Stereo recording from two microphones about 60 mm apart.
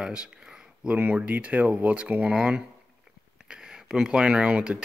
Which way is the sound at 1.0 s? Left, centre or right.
Right.